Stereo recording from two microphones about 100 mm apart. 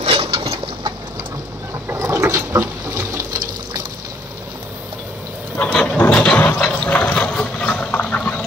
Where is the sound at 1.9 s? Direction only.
30° right (ahead or behind).